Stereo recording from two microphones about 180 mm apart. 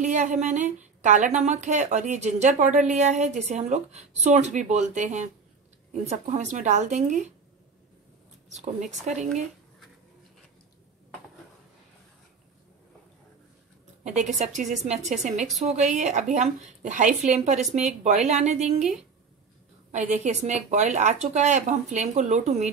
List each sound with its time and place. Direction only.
0.0 s speech: 40° right (ahead or behind)
8.5 s speech: 40° right (ahead or behind)
14.0 s speech: 40° right (ahead or behind)
15.4 s a woman's voice: centre (ahead or behind)
16.0 s speech: 40° right (ahead or behind)
19.9 s speech: 40° right (ahead or behind)